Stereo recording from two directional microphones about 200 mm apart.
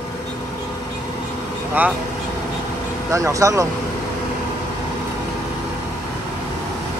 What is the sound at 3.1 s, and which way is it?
Speech, 15° right (ahead or behind).